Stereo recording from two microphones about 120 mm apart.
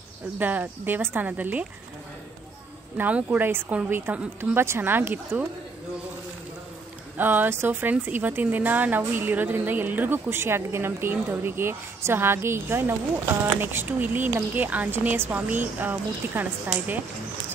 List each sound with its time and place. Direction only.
0.4 s speech: 15° right (ahead or behind)
3.0 s speech: 15° right (ahead or behind)
7.2 s speech: 15° right (ahead or behind)